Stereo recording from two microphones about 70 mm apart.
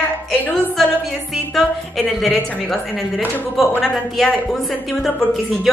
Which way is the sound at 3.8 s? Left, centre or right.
Centre.